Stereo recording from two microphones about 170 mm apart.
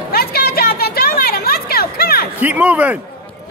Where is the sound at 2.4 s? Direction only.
10° right (ahead or behind).